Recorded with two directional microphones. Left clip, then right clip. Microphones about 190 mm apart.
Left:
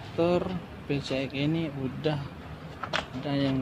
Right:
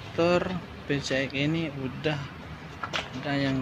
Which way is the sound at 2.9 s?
15° left (ahead or behind).